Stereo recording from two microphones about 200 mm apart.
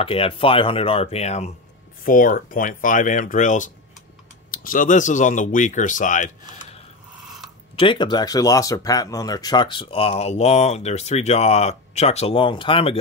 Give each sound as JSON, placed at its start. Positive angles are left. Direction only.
{"t": 0.0, "sound": "speech", "side_deg": 25}
{"t": 2.0, "sound": "speech", "side_deg": 45}
{"t": 7.8, "sound": "speech", "side_deg": 25}